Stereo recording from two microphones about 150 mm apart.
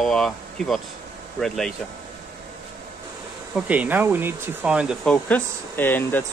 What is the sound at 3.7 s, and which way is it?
Speech, 10° right (ahead or behind).